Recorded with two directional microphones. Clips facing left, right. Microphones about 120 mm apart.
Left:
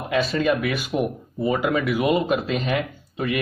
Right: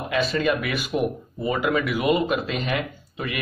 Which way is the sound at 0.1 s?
35° left (ahead or behind).